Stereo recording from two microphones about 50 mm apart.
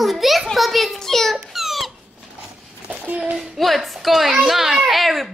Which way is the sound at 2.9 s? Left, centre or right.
Right.